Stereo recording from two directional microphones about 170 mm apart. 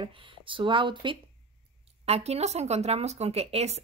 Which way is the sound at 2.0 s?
40° right (ahead or behind).